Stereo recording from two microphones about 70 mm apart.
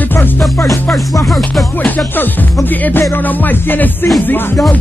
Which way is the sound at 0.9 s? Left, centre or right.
Centre.